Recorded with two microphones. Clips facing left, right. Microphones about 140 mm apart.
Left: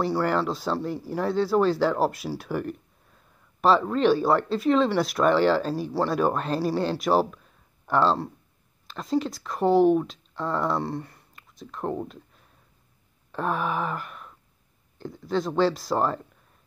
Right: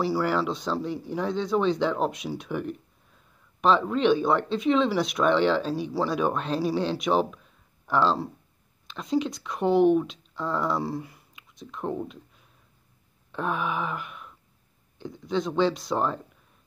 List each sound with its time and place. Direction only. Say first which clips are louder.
0.0 s speech: left 1 dB; centre (ahead or behind)
4.2 s speech: left 2 dB; 5° left (ahead or behind)
13.5 s a sound: left 2 dB; 40° left (ahead or behind)
15.0 s speech: left 1 dB; centre (ahead or behind)